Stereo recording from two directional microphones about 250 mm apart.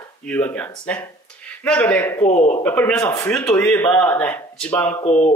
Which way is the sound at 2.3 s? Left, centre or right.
Left.